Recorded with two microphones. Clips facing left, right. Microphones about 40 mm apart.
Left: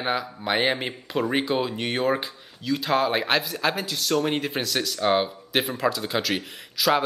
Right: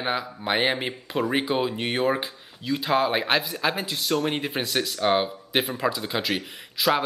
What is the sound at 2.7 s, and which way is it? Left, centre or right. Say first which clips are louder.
Speech: even; centre.